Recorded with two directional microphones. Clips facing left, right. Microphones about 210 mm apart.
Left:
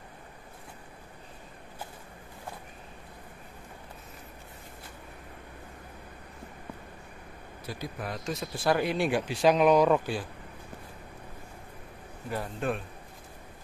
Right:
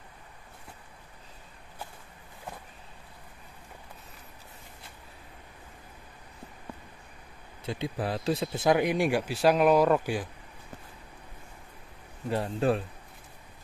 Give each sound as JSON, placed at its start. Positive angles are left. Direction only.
{"t": 7.6, "sound": "speech", "side_deg": -25}
{"t": 12.3, "sound": "speech", "side_deg": -30}